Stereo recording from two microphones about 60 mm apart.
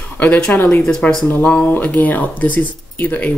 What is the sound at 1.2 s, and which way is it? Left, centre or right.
Speech, left.